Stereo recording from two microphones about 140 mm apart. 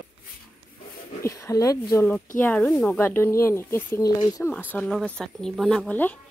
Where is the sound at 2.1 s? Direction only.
10° left (ahead or behind).